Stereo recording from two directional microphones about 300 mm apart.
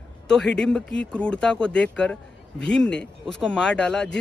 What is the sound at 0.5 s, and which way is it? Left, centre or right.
Speech, centre.